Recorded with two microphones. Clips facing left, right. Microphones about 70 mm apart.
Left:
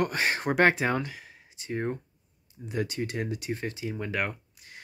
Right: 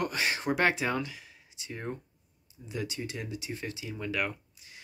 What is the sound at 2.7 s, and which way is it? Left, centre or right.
Speech, left.